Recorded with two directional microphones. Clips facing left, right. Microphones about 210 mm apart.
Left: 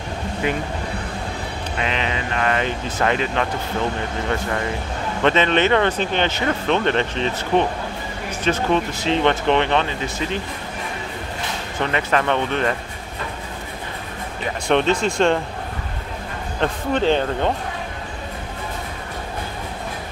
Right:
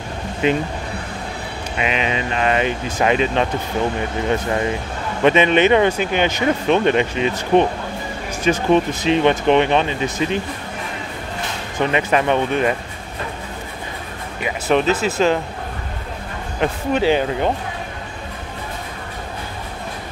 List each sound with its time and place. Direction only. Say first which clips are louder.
0.4 s speech: right 6 dB; 20° right (ahead or behind)
1.8 s speech: right 3 dB; 15° right (ahead or behind)
11.8 s speech: right 3 dB; 15° right (ahead or behind)
14.4 s speech: right 1 dB; 5° right (ahead or behind)
16.5 s speech: right 2 dB; 10° right (ahead or behind)